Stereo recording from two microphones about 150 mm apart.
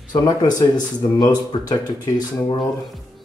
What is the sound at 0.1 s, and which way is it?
Speech, 25° left (ahead or behind).